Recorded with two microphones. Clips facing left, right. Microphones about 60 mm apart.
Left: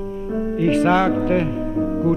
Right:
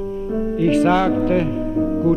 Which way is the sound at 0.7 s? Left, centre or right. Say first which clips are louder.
Right 1 dB; centre.